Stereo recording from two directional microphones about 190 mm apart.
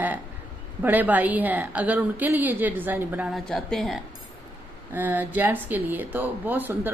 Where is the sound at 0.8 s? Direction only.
10° right (ahead or behind).